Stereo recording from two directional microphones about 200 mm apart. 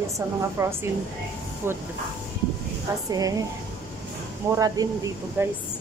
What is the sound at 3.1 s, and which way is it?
Speech, 20° right (ahead or behind).